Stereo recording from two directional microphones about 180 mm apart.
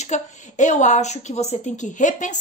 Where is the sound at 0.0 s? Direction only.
40° left (ahead or behind).